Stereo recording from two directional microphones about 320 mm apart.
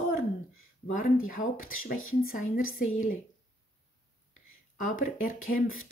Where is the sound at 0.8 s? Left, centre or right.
Left.